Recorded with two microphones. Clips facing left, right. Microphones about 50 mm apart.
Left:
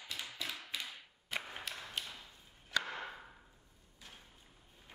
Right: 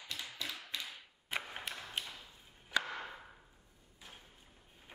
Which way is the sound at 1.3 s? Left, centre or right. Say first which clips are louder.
Right 1 dB; centre.